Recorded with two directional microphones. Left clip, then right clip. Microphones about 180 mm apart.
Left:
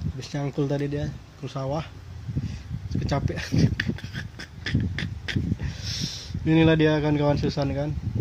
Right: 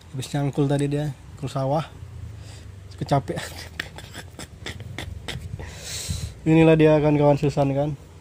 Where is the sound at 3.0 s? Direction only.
45° right (ahead or behind).